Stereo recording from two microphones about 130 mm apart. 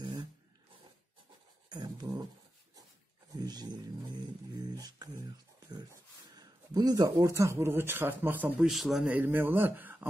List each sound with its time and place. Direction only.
0.0 s a sound: 30° right (ahead or behind)
1.7 s a sound: 30° right (ahead or behind)
3.3 s music: 30° right (ahead or behind)
6.3 s speech: 30° right (ahead or behind); by 8.6 s 15° right (ahead or behind)
8.6 s speech: centre (ahead or behind)
9.1 s speech: 15° right (ahead or behind)